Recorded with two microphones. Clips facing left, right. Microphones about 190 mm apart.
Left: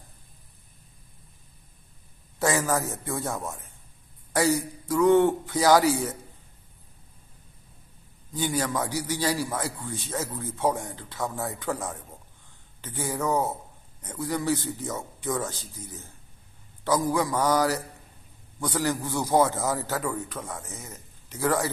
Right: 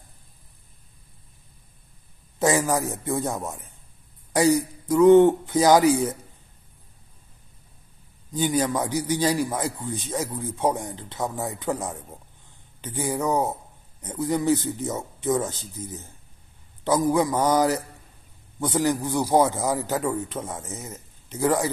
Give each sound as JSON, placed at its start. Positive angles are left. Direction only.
{"t": 2.3, "sound": "a man's voice", "side_deg": -15}
{"t": 8.3, "sound": "a man's voice", "side_deg": -20}